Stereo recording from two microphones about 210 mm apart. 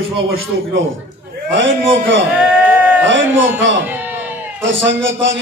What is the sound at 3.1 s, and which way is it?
Speech, 65° right (ahead or behind).